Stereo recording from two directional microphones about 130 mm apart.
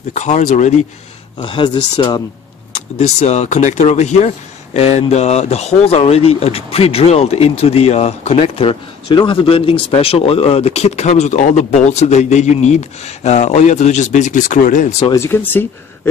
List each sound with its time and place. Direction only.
0.1 s speech: 65° left (ahead or behind)
1.4 s speech: 40° left (ahead or behind)
3.0 s speech: 60° left (ahead or behind); by 15.0 s 85° left
15.0 s speech: 20° left (ahead or behind)